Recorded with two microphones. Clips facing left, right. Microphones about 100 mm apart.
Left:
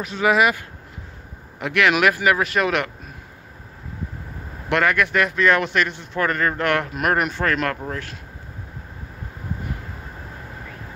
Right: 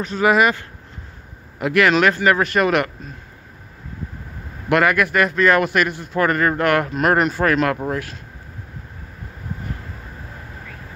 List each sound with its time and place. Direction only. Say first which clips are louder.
0.0 s a man's voice: right 2 dB; centre (ahead or behind)
1.6 s a man's voice: right 3 dB; centre (ahead or behind)
4.6 s a man's voice: right 3 dB; 5° right (ahead or behind)
7.7 s speech: right 6 dB; 20° right (ahead or behind)